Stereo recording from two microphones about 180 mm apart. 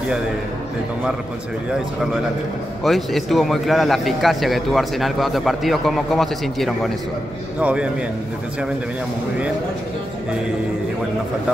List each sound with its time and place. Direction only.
2.8 s a man's voice: centre (ahead or behind)